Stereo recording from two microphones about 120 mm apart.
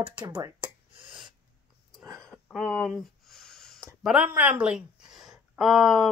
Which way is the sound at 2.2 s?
5° left (ahead or behind).